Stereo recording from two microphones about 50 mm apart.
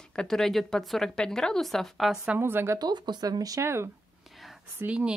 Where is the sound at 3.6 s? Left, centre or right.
Right.